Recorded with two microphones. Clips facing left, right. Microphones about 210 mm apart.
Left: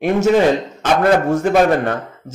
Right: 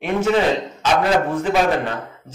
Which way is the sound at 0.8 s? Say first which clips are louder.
Left 4 dB; 50° left (ahead or behind).